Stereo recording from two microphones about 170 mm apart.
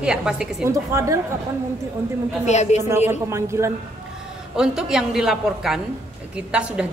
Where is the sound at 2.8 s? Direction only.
15° right (ahead or behind).